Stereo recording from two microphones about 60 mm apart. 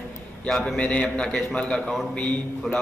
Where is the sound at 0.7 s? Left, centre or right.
Centre.